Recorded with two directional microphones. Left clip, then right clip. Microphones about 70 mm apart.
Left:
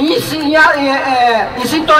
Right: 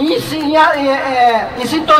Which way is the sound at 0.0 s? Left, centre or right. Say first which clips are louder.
Left 2 dB; left.